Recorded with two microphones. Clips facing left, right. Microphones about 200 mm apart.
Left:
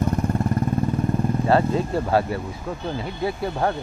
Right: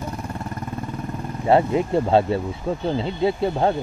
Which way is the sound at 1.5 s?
20° right (ahead or behind).